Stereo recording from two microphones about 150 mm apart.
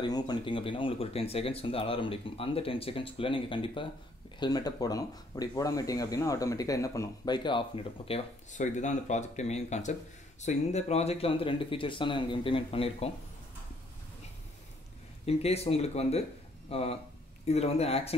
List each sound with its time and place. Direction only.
0.0 s speech: 30° left (ahead or behind)
8.5 s speech: 50° left (ahead or behind)
15.2 s speech: 45° left (ahead or behind)